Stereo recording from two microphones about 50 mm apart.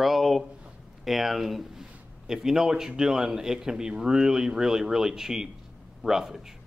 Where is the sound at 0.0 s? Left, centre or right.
Centre.